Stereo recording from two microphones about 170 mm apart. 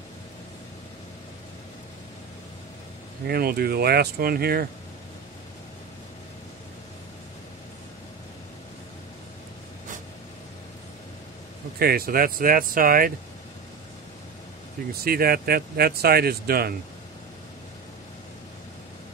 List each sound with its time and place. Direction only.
3.3 s speech: 65° right (ahead or behind)
11.8 s speech: 65° right (ahead or behind)
15.0 s speech: 60° right (ahead or behind)